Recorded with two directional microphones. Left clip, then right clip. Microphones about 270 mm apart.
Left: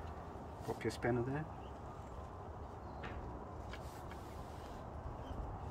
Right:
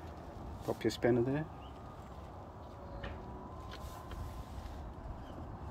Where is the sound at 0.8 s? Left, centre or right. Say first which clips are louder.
Right 7 dB; right.